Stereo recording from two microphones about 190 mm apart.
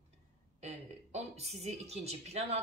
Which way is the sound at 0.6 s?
35° right (ahead or behind).